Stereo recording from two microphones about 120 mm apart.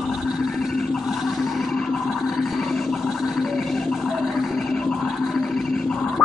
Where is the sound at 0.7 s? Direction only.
Centre (ahead or behind).